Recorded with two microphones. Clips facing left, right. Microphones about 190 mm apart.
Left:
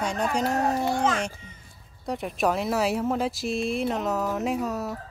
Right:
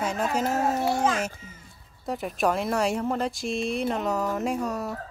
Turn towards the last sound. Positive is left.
turn(degrees=0)  # may be behind; listen again after turning